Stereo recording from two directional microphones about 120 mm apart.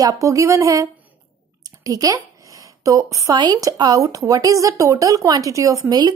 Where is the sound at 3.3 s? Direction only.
35° right (ahead or behind).